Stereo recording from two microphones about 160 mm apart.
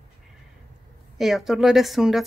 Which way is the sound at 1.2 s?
Centre (ahead or behind).